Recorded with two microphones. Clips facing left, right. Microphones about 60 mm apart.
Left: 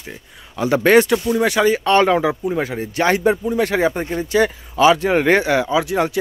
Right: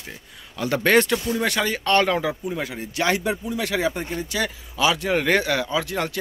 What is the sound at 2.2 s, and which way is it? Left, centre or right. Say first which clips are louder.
Speech: left 7 dB; left.